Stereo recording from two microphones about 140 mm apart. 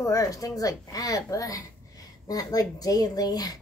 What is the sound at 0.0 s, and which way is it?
A woman's voice, 25° left (ahead or behind).